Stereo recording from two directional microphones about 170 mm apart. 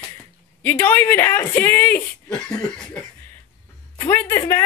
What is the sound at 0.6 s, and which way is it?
Speech, 10° left (ahead or behind).